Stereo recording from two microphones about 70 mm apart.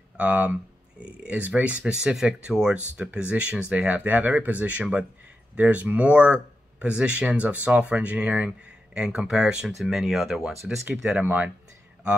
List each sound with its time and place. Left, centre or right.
0.2 s speech: centre
11.2 s speech: right